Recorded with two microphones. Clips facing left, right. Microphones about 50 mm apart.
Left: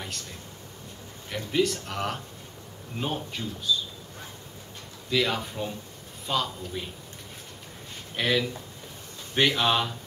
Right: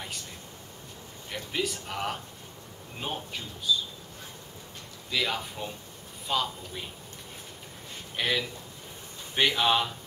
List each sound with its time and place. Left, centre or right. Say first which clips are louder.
1.3 s speech: left 6 dB; centre
5.1 s speech: left 4 dB; centre
8.2 s speech: left 3 dB; centre